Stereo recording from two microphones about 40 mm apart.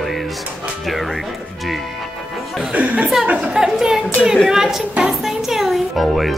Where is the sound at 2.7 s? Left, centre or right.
Right.